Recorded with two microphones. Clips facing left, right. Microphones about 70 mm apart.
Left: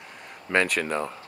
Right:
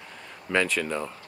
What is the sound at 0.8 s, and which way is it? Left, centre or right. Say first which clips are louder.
Speech: left 2 dB; left.